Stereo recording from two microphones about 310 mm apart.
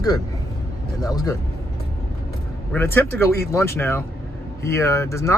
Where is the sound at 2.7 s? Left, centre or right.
Centre.